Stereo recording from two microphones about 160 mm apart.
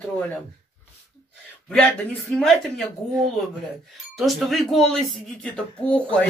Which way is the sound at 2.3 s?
5° left (ahead or behind).